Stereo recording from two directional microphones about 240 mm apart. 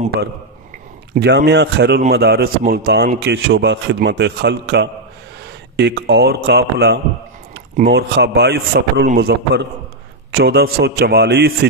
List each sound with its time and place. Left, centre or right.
1.1 s a man's voice: right